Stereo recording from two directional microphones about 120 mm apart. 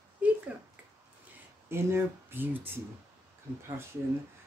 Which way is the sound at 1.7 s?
20° right (ahead or behind).